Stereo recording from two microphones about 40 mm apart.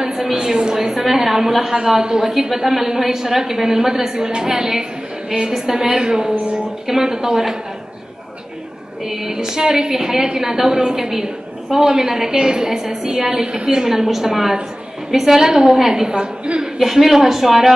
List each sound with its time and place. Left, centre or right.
0.0 s a woman's voice: centre
9.0 s a woman's voice: centre
16.7 s a woman's voice: centre